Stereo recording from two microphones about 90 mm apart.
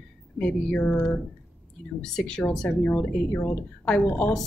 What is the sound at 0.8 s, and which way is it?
Speech, 25° left (ahead or behind).